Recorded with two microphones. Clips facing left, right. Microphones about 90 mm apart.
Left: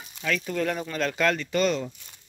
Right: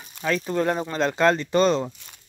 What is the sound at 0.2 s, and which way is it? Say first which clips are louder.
Speech: right 4 dB; 30° right (ahead or behind).